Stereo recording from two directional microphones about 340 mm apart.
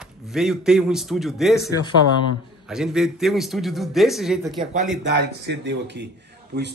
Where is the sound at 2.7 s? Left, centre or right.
Centre.